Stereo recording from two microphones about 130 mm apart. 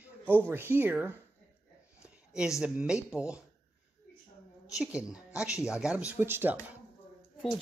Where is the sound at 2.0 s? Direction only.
5° right (ahead or behind).